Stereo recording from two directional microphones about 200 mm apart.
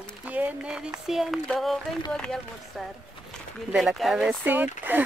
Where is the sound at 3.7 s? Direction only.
Centre (ahead or behind).